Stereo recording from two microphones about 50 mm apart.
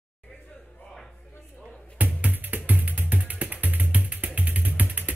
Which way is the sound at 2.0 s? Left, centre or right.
Right.